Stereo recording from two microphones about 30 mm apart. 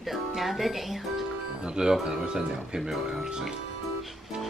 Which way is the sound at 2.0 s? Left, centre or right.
Right.